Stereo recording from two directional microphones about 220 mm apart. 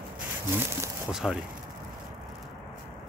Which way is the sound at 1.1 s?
Centre (ahead or behind).